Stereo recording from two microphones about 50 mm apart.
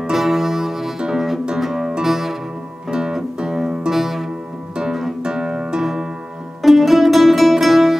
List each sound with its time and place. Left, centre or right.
0.0 s music: centre
5.2 s music: centre
6.6 s music: centre